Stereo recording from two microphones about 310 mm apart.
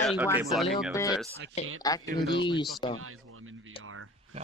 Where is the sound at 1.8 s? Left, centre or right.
Centre.